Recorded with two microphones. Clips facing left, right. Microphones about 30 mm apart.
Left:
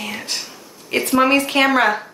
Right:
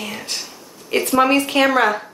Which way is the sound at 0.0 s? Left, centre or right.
Centre.